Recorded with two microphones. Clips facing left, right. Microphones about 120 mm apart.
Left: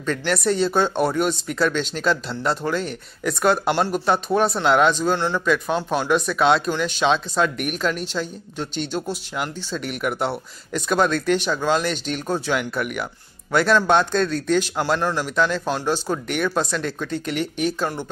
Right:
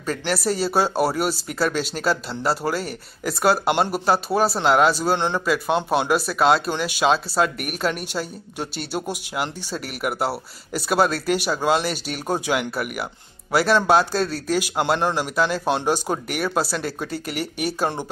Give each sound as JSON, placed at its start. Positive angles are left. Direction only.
{"t": 0.0, "sound": "speech", "side_deg": -5}
{"t": 5.1, "sound": "speech", "side_deg": -20}
{"t": 5.9, "sound": "speech", "side_deg": -5}
{"t": 14.8, "sound": "speech", "side_deg": -20}
{"t": 15.7, "sound": "speech", "side_deg": -20}
{"t": 16.5, "sound": "speech", "side_deg": -5}
{"t": 17.8, "sound": "speech", "side_deg": -20}